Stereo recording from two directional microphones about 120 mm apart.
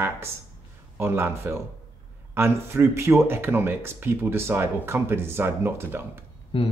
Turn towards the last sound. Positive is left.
turn(degrees=45)  # may be behind; listen again after turning